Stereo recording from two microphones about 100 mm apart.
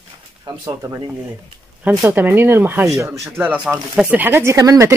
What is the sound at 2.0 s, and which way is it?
Speech, 20° right (ahead or behind).